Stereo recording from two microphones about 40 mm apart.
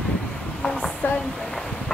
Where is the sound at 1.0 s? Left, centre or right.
Left.